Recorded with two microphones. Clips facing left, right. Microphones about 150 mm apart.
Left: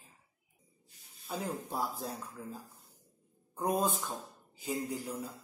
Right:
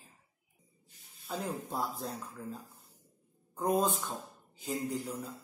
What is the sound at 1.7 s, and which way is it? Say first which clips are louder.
Speech: even; 10° left (ahead or behind).